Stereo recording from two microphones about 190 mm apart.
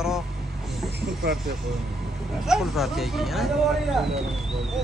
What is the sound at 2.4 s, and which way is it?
Speech, centre (ahead or behind).